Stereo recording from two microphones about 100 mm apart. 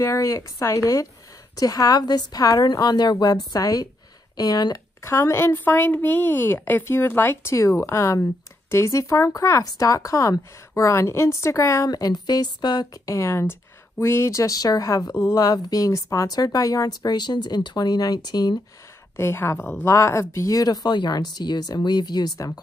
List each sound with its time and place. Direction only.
0.0 s a woman's voice: 35° left (ahead or behind)
5.0 s a woman's voice: 25° left (ahead or behind); by 18.6 s 45° left (ahead or behind)
19.1 s a woman's voice: 25° left (ahead or behind); by 22.5 s 45° left (ahead or behind)